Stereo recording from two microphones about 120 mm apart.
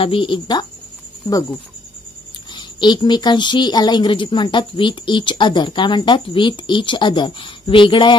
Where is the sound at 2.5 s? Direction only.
40° left (ahead or behind).